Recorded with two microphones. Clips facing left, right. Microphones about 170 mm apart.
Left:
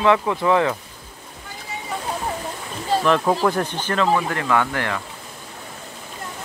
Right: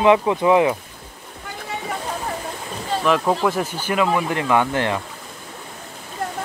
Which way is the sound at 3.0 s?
Centre (ahead or behind).